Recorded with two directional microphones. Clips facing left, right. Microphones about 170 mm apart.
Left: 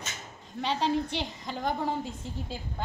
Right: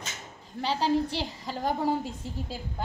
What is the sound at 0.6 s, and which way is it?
A woman's voice, 5° right (ahead or behind).